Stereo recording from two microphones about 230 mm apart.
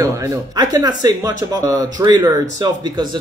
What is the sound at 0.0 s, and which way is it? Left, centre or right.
Speech, centre.